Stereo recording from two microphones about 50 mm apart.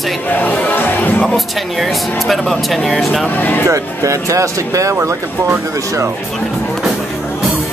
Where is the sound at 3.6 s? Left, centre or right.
Right.